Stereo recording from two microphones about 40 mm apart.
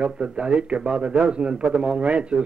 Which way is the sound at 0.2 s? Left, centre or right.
Right.